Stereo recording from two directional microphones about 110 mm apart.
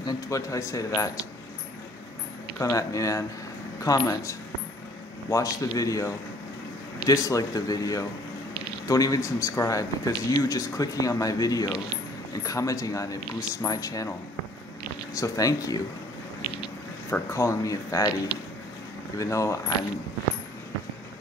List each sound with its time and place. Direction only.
0.0 s speech: 30° left (ahead or behind)
2.6 s speech: 30° left (ahead or behind)
15.1 s speech: 30° left (ahead or behind)
17.1 s speech: 25° left (ahead or behind)
19.1 s speech: 30° left (ahead or behind)